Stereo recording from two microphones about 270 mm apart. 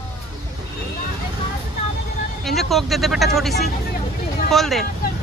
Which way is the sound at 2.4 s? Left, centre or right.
Centre.